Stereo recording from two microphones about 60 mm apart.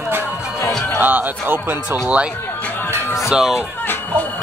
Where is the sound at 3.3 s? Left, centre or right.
Centre.